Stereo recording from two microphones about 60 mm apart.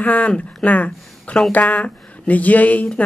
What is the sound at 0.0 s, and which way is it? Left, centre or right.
A woman's voice, left.